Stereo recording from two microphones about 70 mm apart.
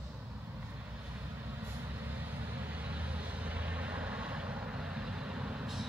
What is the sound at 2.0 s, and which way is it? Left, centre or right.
Vehicle, right.